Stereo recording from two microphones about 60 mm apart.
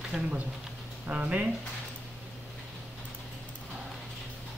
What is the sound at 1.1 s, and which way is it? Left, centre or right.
Speech, right.